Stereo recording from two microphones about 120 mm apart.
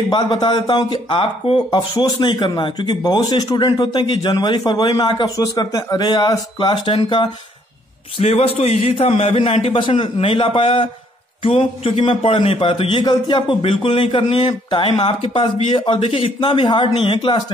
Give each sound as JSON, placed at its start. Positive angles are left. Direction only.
{"t": 0.1, "sound": "speech", "side_deg": 40}
{"t": 8.2, "sound": "a man's voice", "side_deg": 60}